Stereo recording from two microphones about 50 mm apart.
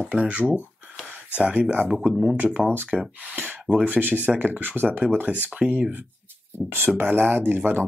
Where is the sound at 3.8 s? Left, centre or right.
Right.